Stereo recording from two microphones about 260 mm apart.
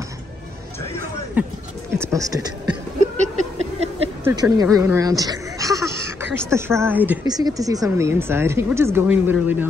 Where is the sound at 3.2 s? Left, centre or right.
Right.